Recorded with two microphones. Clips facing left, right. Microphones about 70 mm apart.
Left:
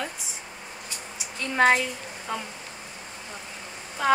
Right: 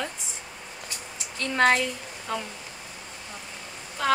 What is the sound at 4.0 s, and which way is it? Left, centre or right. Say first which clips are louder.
Speech: left 2 dB; centre.